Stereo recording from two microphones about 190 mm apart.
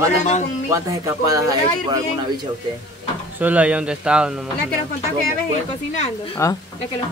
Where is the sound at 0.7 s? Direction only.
15° right (ahead or behind).